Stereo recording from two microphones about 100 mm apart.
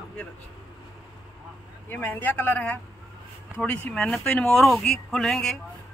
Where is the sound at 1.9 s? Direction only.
20° left (ahead or behind).